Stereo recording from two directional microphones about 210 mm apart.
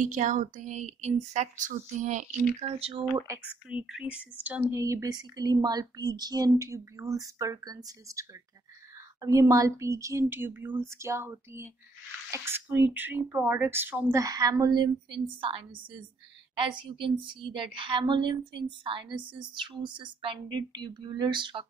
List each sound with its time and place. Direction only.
0.0 s a woman's voice: 35° right (ahead or behind)
3.2 s a woman's voice: 10° right (ahead or behind)